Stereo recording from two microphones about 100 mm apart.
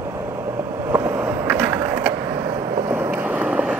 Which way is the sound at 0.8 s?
30° right (ahead or behind).